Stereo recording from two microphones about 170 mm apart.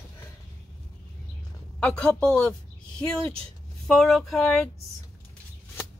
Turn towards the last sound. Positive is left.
turn(degrees=0)  # may be behind; listen again after turning